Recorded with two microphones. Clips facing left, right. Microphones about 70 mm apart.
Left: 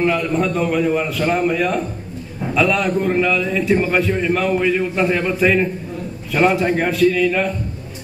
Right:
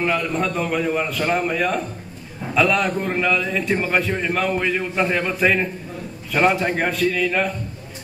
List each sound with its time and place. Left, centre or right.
0.0 s a man's voice: centre